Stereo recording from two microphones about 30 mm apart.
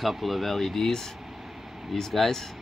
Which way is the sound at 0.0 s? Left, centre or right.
Centre.